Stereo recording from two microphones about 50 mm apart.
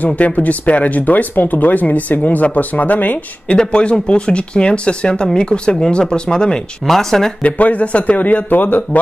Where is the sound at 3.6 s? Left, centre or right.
Left.